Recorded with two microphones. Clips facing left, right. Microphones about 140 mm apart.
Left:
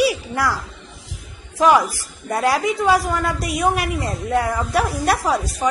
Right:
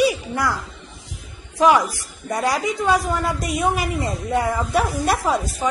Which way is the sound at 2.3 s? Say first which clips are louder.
Left 3 dB; centre (ahead or behind).